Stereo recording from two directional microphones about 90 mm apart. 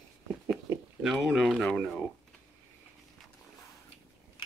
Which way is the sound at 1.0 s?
5° right (ahead or behind).